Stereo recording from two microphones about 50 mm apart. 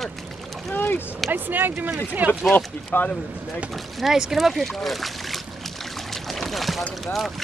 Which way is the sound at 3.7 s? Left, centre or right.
Centre.